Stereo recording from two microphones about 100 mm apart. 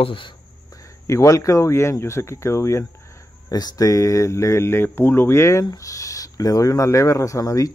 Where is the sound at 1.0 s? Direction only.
30° left (ahead or behind).